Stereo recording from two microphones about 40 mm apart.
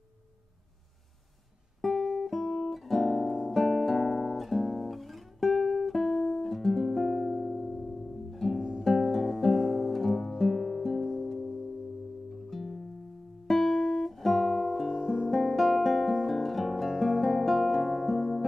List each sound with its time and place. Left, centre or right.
1.8 s guitar: centre
8.5 s music: right
8.8 s music: centre
13.7 s guitar: centre
14.6 s music: centre
15.4 s music: centre